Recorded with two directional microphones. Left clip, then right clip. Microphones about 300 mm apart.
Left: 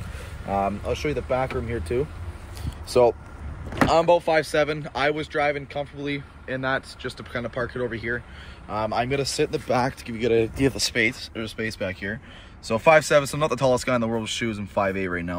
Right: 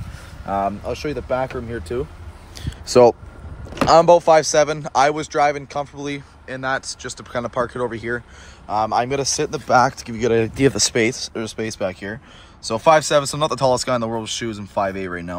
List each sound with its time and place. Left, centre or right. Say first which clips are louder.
0.5 s speech: right 3 dB; centre
2.6 s a sound: right 6 dB; right
3.8 s speech: right 7 dB; right
4.4 s speech: right 6 dB; centre
11.1 s speech: right 5 dB; centre